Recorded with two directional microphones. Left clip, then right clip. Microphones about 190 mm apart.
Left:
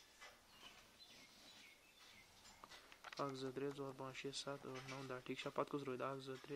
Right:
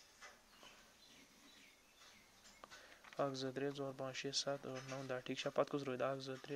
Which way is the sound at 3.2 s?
20° right (ahead or behind).